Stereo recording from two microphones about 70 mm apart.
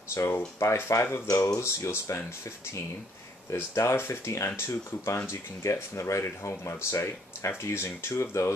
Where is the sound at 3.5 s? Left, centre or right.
Left.